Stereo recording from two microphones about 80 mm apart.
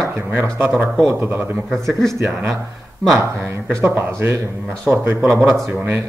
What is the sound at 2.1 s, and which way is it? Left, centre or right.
Speech, right.